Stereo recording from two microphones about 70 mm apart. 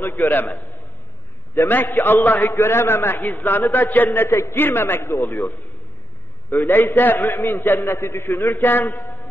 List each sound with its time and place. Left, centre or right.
0.2 s a man's voice: left
1.7 s a man's voice: left
3.2 s a man's voice: left
6.5 s a man's voice: left